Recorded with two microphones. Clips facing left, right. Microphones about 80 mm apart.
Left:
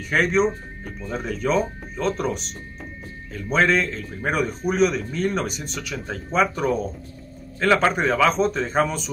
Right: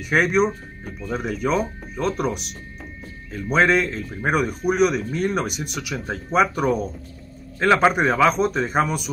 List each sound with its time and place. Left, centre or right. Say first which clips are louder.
0.0 s speech: right 1 dB; centre